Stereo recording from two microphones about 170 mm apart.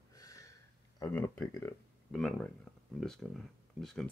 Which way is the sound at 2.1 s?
5° left (ahead or behind).